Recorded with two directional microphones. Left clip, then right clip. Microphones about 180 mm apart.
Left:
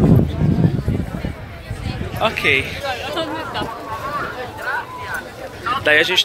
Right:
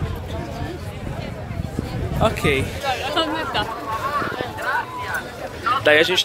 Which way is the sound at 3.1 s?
60° right (ahead or behind).